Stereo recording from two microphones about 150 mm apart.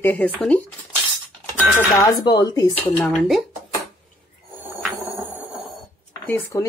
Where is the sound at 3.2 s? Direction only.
Centre (ahead or behind).